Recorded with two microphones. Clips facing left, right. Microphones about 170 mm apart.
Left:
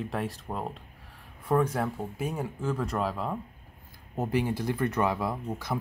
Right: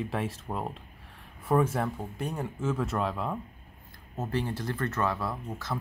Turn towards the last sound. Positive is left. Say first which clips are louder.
# left 3 dB
turn(degrees=15)  # may be behind; listen again after turning